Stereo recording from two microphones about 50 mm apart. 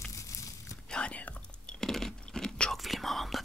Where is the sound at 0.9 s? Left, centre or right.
Left.